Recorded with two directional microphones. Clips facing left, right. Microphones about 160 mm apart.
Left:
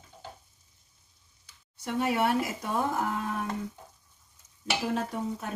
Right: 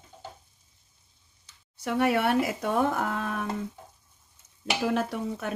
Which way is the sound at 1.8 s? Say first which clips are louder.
Right 3 dB; 65° right (ahead or behind).